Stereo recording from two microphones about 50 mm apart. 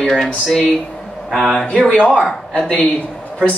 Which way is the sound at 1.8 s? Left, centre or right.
Left.